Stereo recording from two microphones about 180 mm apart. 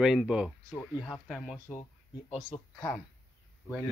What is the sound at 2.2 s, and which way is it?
Speech, 30° left (ahead or behind).